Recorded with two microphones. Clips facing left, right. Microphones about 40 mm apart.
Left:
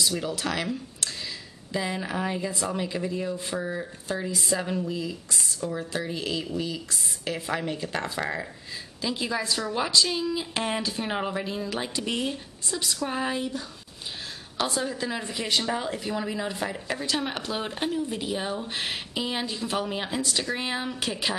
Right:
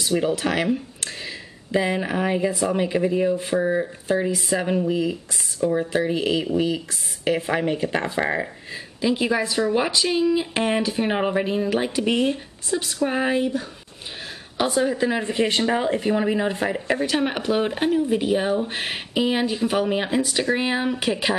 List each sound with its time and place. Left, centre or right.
0.0 s speech: right
5.3 s speech: centre